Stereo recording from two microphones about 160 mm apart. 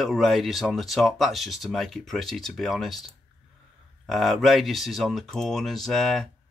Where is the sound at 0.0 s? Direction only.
Centre (ahead or behind).